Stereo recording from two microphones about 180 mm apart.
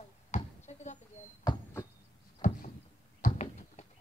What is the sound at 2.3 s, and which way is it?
Power windows, 45° left (ahead or behind).